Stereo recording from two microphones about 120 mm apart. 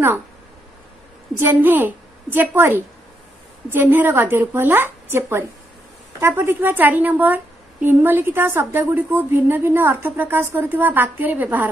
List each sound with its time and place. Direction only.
1.3 s a woman's voice: 15° right (ahead or behind)